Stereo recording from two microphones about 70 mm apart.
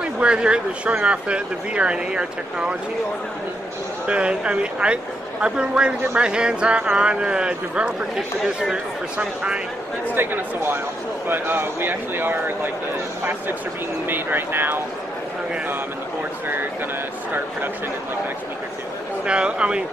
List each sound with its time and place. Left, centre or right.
0.0 s speech: centre
4.1 s speech: centre
10.1 s speech: right
19.2 s speech: centre